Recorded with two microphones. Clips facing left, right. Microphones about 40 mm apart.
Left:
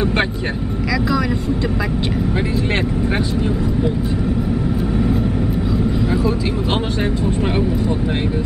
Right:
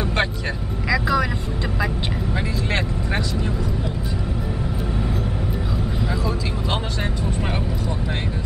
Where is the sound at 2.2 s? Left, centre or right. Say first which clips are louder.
Left 6 dB; left.